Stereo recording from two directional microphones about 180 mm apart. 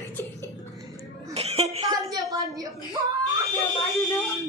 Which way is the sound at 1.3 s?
35° right (ahead or behind).